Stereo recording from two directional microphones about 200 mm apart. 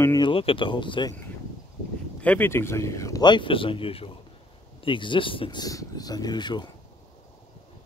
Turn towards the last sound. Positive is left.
turn(degrees=20)  # may be behind; listen again after turning